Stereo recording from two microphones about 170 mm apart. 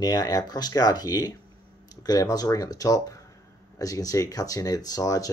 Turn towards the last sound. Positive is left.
turn(degrees=20)  # may be behind; listen again after turning